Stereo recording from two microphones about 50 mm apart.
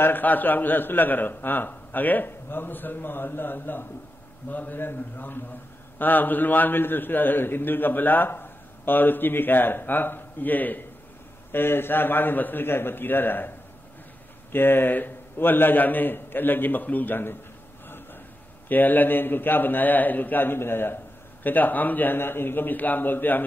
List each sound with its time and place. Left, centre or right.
0.0 s a man's voice: left
11.5 s a man's voice: left
14.5 s a man's voice: left
18.7 s a man's voice: left